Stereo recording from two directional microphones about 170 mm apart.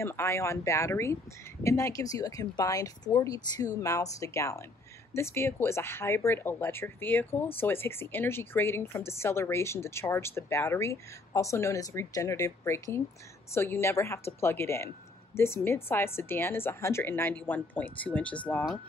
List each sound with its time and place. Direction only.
0.0 s speech: 15° left (ahead or behind)